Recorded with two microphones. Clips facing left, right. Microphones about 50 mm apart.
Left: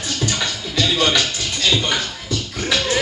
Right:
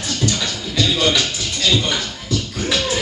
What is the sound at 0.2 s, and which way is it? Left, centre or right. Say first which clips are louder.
Music: right 1 dB; centre.